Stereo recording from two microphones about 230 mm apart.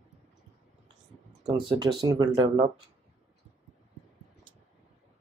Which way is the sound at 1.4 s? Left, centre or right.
Centre.